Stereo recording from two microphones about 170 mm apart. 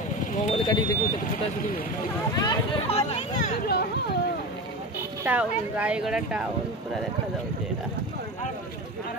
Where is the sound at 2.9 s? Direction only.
40° left (ahead or behind); by 4.2 s 65° left (ahead or behind).